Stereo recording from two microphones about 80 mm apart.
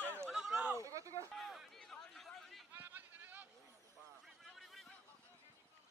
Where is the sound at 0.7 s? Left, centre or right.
Right.